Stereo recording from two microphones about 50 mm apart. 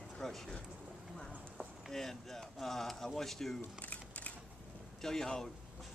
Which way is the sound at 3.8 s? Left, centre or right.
Left.